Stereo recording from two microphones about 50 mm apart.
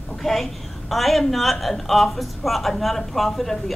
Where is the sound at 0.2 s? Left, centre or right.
Centre.